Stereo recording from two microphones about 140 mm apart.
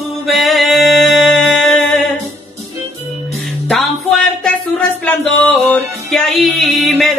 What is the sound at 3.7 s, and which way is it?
Music, centre (ahead or behind).